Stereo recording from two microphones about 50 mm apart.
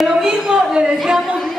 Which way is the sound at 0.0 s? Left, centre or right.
Centre.